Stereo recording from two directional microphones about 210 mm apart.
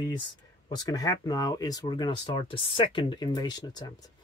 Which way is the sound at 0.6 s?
20° left (ahead or behind).